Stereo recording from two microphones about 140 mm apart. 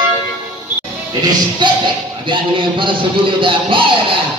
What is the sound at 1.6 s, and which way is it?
Speech, 35° right (ahead or behind).